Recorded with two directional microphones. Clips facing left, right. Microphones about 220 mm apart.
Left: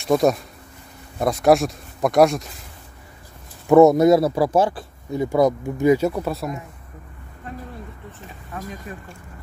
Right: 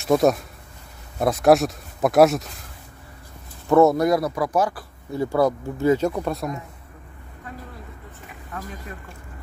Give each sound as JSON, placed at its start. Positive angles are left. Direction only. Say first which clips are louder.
{"t": 0.0, "sound": "speech", "louder": "even", "side_deg": 0}
{"t": 3.6, "sound": "speech", "louder": "left 4 dB", "side_deg": 15}